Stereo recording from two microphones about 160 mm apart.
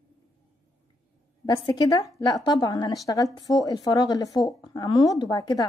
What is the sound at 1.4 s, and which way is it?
Speech, 25° left (ahead or behind).